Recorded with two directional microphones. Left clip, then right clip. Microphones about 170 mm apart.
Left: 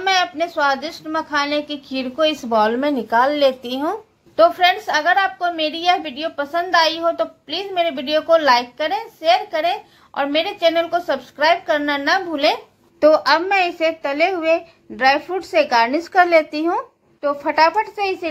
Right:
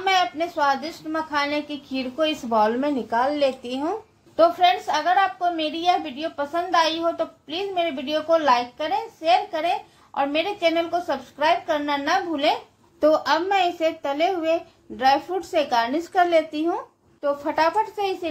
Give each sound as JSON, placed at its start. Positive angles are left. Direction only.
{"t": 0.0, "sound": "a woman's voice", "side_deg": 25}
{"t": 13.0, "sound": "a woman's voice", "side_deg": 20}